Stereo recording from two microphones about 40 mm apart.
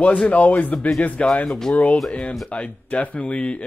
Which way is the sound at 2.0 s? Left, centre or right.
Left.